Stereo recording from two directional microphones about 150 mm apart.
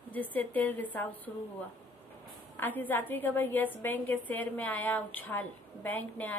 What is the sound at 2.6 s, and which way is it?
A woman's voice, 10° left (ahead or behind).